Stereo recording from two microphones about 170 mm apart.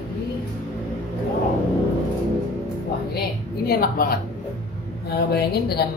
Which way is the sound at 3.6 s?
60° left (ahead or behind).